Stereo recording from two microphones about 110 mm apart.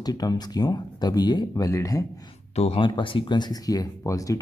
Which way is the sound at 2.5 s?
75° left (ahead or behind).